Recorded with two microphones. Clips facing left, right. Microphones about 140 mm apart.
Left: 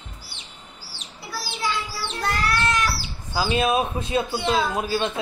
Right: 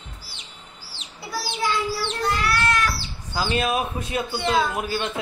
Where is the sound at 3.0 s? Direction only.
10° left (ahead or behind).